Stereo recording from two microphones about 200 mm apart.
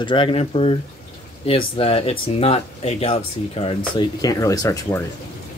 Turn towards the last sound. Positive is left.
turn(degrees=15)  # may be behind; listen again after turning